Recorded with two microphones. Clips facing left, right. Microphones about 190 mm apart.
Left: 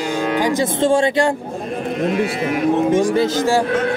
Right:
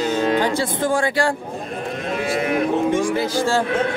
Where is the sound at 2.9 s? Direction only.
30° left (ahead or behind).